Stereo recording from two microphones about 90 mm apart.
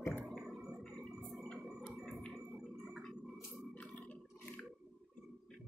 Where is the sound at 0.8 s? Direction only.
5° left (ahead or behind).